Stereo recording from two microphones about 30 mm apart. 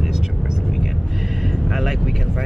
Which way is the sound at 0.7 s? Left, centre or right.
Centre.